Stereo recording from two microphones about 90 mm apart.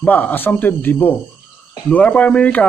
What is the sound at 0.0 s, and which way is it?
Speech, 20° left (ahead or behind).